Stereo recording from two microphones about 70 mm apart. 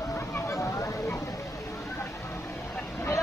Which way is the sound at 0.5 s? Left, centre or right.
Left.